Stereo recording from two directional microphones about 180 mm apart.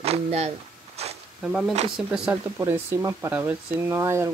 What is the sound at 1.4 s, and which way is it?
Speech, centre (ahead or behind).